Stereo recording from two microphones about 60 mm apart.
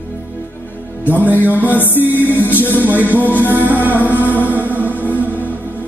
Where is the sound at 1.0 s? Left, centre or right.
Left.